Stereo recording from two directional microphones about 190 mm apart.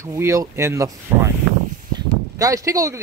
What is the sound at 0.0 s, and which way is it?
Speech, 15° right (ahead or behind).